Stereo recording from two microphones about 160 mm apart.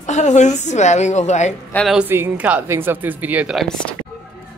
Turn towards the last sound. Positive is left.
turn(degrees=0)  # may be behind; listen again after turning